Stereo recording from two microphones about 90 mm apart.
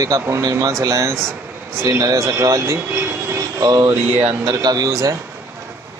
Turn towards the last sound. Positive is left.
turn(degrees=-40)  # may be behind; listen again after turning